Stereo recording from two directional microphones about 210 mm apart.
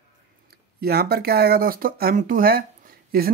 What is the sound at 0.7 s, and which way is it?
Speech, 45° right (ahead or behind).